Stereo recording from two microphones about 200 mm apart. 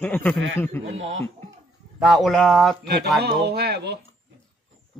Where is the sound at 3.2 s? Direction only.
55° right (ahead or behind).